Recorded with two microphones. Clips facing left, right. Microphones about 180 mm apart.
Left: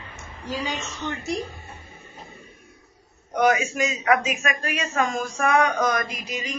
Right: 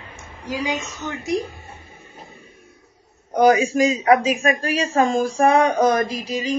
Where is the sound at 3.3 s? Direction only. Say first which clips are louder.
Right 6 dB; 35° right (ahead or behind).